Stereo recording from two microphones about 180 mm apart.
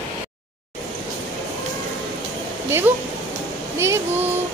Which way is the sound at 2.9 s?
10° right (ahead or behind).